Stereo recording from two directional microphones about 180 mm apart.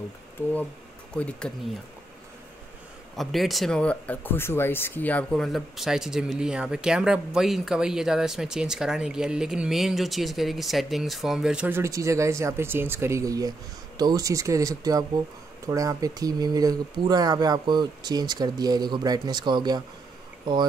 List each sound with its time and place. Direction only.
1.1 s speech: 5° left (ahead or behind)
3.2 s speech: centre (ahead or behind); by 19.8 s 25° right (ahead or behind)